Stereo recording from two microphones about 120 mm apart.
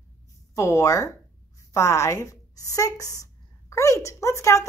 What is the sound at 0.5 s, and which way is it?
A woman's voice, 25° left (ahead or behind).